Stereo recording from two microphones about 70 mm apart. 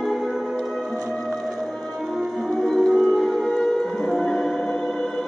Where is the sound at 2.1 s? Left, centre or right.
Centre.